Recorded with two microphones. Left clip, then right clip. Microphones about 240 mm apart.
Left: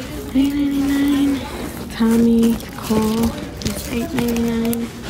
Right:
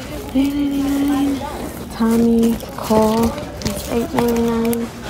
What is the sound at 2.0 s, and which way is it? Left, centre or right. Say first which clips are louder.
Speech: even; left.